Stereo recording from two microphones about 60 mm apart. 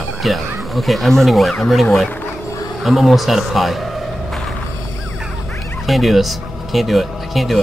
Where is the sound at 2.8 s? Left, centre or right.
Centre.